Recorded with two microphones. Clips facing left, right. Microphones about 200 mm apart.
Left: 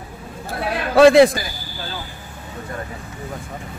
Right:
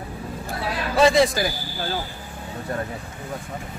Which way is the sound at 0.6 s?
65° left (ahead or behind).